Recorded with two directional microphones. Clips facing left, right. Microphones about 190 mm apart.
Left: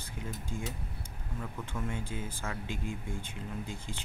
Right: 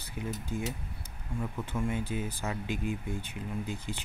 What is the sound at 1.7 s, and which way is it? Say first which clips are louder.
Speech: right 5 dB; 10° right (ahead or behind).